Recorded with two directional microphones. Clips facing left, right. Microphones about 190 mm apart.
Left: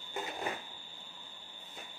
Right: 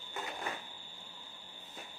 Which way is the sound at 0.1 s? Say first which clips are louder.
Left 3 dB; 25° left (ahead or behind).